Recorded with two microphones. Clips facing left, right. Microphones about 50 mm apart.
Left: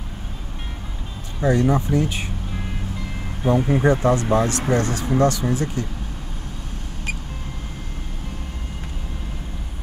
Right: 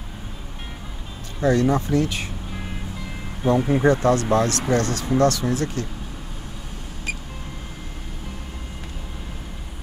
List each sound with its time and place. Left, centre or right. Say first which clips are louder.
1.4 s speech: even; centre
3.5 s speech: even; centre
3.9 s speech: even; centre